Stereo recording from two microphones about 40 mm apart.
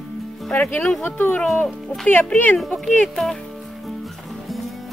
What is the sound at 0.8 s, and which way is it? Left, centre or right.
Speech, centre.